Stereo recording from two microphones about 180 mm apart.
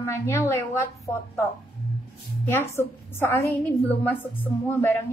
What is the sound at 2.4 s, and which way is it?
A woman's voice, 15° left (ahead or behind).